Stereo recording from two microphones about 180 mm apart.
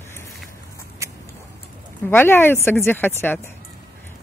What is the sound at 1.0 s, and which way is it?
Biting, 15° right (ahead or behind).